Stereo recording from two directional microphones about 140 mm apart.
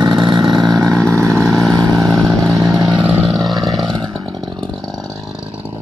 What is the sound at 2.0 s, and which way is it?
Vehicle, 5° left (ahead or behind).